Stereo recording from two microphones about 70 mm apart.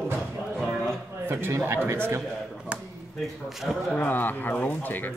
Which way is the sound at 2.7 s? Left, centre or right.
Centre.